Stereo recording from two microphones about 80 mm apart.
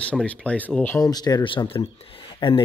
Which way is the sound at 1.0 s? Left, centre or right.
Left.